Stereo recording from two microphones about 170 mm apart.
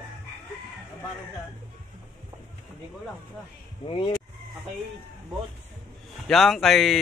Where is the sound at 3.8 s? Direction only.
30° left (ahead or behind).